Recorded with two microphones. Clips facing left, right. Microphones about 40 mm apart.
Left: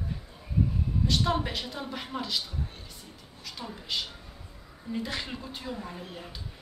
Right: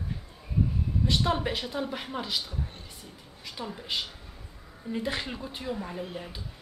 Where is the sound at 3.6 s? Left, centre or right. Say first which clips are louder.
Right 3 dB; centre.